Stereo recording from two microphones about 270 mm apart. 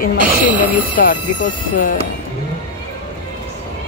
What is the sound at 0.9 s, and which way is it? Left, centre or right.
Speech, left.